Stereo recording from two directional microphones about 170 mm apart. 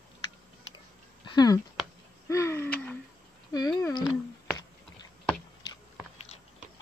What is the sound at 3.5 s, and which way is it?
Speech, 20° left (ahead or behind).